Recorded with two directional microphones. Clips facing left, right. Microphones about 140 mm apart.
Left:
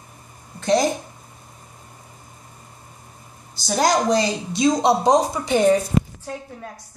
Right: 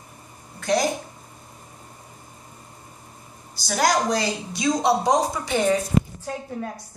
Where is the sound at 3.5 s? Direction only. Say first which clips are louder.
Left 2 dB; 25° left (ahead or behind).